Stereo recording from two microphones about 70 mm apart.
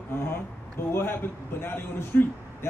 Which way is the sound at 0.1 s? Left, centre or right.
Left.